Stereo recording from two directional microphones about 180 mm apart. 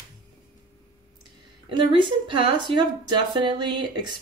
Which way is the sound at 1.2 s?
25° right (ahead or behind).